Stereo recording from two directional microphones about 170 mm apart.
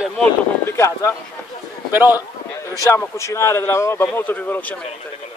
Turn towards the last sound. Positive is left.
turn(degrees=10)  # may be behind; listen again after turning